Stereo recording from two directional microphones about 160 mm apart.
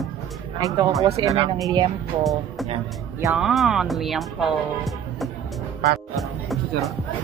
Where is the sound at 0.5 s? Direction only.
20° right (ahead or behind).